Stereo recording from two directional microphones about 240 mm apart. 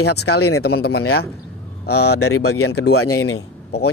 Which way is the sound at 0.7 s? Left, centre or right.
Left.